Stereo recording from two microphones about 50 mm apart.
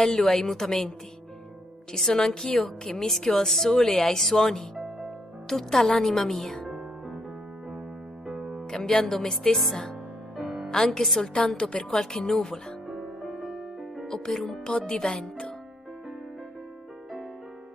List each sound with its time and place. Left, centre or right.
0.0 s a woman's voice: centre
1.9 s speech: centre
4.7 s music: centre
5.5 s a woman's voice: centre
8.3 s music: centre
8.6 s music: centre
9.1 s a woman's voice: centre
10.4 s music: centre
10.7 s speech: centre
11.5 s speech: centre
12.8 s music: centre
14.0 s speech: centre